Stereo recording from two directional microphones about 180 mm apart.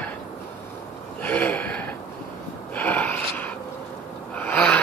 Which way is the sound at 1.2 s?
10° left (ahead or behind).